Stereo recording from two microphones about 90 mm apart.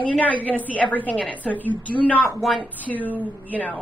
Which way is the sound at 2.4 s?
Centre (ahead or behind).